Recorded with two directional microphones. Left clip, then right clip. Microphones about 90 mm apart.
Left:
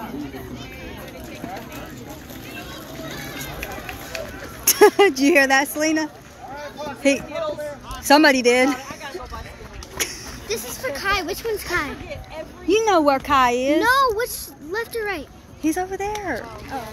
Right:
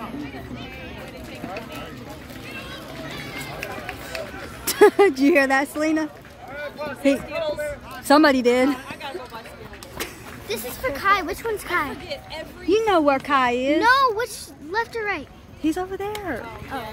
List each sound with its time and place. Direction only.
3.6 s run: 25° right (ahead or behind)
4.6 s speech: 25° right (ahead or behind)
10.0 s a sound: 15° right (ahead or behind)
10.5 s a sound: 5° left (ahead or behind)
12.6 s speech: centre (ahead or behind)
13.7 s speech: 20° left (ahead or behind)
15.6 s speech: 5° right (ahead or behind)